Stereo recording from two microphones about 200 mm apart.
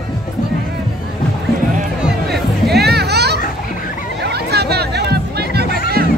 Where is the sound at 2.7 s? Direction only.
55° right (ahead or behind).